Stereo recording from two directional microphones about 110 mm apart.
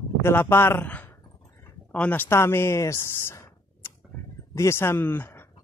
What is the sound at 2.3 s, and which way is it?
Speech, 20° left (ahead or behind).